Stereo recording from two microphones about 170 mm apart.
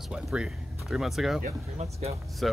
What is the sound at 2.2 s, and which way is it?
Speech, centre (ahead or behind).